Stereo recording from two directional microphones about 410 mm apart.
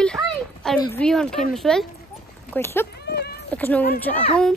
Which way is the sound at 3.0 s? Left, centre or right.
Left.